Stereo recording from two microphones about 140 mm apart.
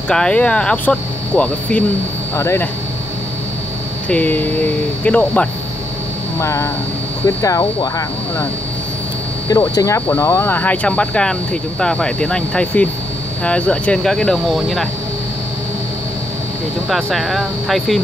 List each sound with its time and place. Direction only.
0.1 s speech: 5° left (ahead or behind)
2.3 s speech: 20° left (ahead or behind)
4.1 s speech: 10° left (ahead or behind)
6.4 s speech: 20° left (ahead or behind)
9.5 s speech: 25° left (ahead or behind); by 14.9 s centre (ahead or behind)
16.9 s speech: centre (ahead or behind)